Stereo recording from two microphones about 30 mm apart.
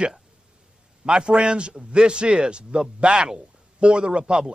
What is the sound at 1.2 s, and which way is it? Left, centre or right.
A man's voice, right.